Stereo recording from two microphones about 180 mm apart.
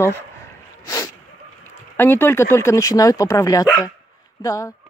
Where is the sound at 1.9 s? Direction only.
10° left (ahead or behind).